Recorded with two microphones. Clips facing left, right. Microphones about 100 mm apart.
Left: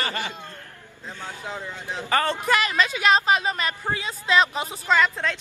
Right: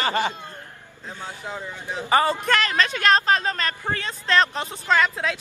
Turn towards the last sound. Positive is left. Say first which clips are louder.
# even
turn(degrees=-5)  # may be behind; listen again after turning